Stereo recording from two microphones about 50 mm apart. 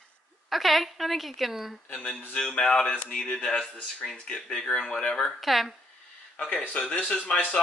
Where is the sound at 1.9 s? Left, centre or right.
Left.